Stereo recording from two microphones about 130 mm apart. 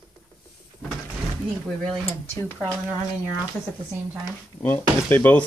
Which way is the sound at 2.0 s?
20° left (ahead or behind).